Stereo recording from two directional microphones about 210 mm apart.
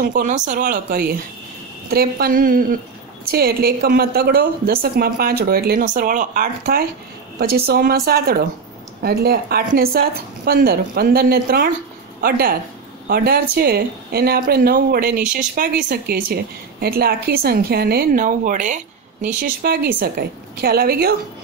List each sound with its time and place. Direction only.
0.1 s a woman's voice: 40° right (ahead or behind)